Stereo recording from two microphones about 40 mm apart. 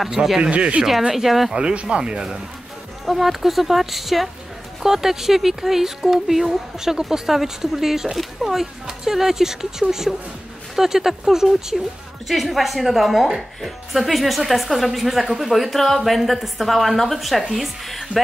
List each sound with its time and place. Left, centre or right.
0.0 s speech: centre
0.4 s speech: right
1.1 s a woman's voice: centre
1.5 s speech: right
3.1 s a woman's voice: centre